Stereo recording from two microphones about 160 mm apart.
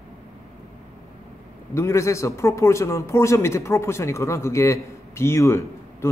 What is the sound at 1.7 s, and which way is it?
A man's voice, 15° left (ahead or behind).